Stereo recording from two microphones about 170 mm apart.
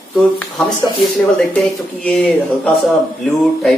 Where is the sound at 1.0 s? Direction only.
Centre (ahead or behind).